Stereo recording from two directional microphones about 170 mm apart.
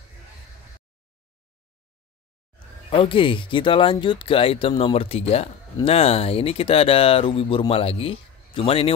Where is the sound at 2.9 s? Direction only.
30° left (ahead or behind).